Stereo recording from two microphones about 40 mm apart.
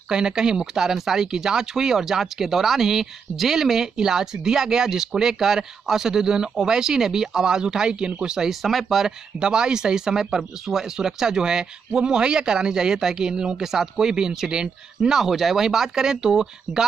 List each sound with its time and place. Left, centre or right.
0.1 s speech: centre
8.5 s speech: centre
9.4 s speech: centre
15.1 s speech: centre